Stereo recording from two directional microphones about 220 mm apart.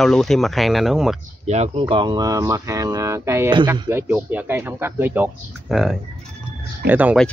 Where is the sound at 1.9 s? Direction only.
20° right (ahead or behind).